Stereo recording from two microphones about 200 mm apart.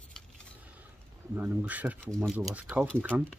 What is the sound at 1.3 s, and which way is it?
Speech, 10° right (ahead or behind).